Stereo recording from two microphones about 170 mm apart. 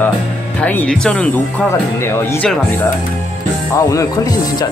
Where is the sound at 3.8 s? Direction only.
20° left (ahead or behind).